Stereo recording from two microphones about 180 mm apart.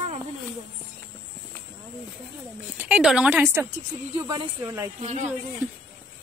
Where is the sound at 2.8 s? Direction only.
5° right (ahead or behind).